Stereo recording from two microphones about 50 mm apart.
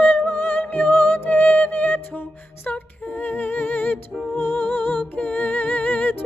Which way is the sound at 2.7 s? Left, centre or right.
Left.